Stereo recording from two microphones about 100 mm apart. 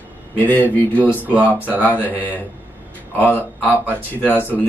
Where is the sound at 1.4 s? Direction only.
15° right (ahead or behind).